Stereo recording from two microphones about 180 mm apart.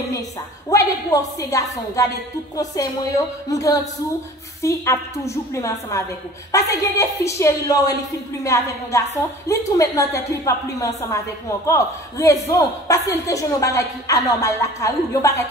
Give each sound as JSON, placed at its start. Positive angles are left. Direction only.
{"t": 0.7, "sound": "a woman's voice", "side_deg": 20}
{"t": 2.5, "sound": "music", "side_deg": 20}
{"t": 4.6, "sound": "a woman's voice", "side_deg": 15}